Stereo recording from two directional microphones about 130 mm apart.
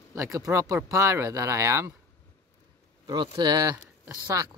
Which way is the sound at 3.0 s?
35° right (ahead or behind).